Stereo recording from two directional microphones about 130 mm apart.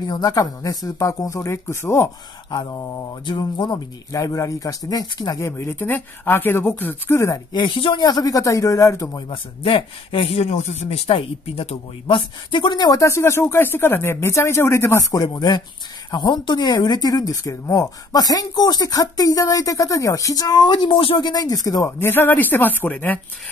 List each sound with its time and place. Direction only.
0.0 s speech: 30° left (ahead or behind)
2.5 s speech: 30° left (ahead or behind)
7.5 s speech: 40° left (ahead or behind)
9.3 s speech: 45° left (ahead or behind); by 23.2 s 15° left (ahead or behind)